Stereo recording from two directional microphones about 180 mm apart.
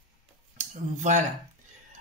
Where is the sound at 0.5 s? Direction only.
45° right (ahead or behind).